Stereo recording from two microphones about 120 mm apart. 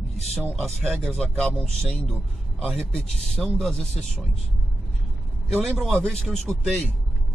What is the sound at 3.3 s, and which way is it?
Speech, 5° left (ahead or behind).